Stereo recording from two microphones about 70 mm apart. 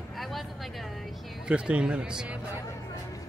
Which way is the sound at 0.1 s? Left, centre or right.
Centre.